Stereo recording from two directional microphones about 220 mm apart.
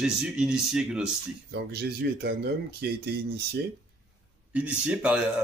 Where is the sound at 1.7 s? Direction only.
45° right (ahead or behind).